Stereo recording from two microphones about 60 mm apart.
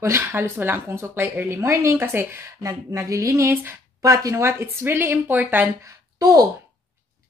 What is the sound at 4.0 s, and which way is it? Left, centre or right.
Speech, right.